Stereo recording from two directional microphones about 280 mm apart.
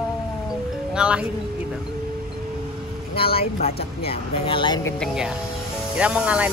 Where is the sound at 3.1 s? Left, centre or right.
Centre.